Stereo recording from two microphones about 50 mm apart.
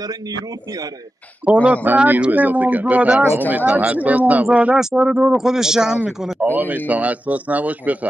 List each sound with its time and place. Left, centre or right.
1.4 s speech: right
4.7 s speech: centre
6.5 s speech: right